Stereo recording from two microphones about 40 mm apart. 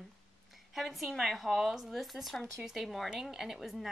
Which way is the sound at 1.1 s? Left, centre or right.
Centre.